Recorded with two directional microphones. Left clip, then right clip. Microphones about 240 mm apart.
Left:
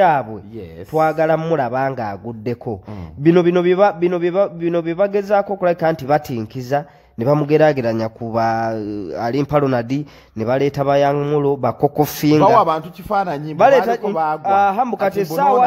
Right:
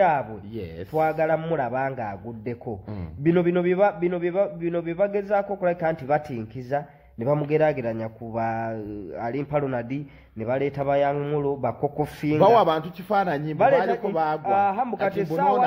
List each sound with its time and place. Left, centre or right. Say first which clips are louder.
0.9 s a man's voice: left 7 dB; left
12.4 s speech: left 2 dB; left
13.6 s a man's voice: left 8 dB; left
14.1 s speech: left 5 dB; left
14.4 s a man's voice: left 10 dB; left